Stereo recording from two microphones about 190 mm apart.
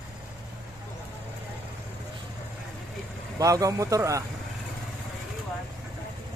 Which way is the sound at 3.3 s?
20° right (ahead or behind).